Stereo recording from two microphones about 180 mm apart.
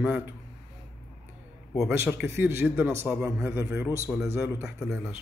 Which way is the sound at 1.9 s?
10° right (ahead or behind).